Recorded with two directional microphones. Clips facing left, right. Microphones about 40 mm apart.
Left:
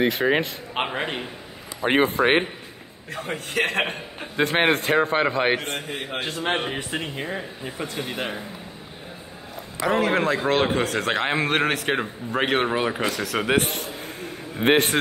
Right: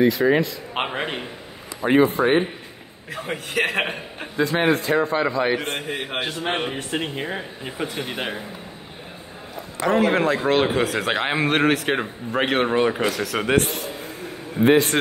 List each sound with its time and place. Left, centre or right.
0.0 s a man's voice: left
0.7 s a man's voice: centre
1.8 s a man's voice: left
3.3 s a man's voice: centre
4.4 s a man's voice: left
4.9 s speech: left
5.6 s a man's voice: right
5.9 s speech: right
6.9 s speech: centre
7.6 s speech: right
9.8 s a man's voice: centre
14.0 s a sound: left